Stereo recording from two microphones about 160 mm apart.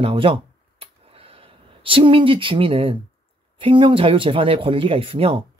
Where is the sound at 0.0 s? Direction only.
35° right (ahead or behind).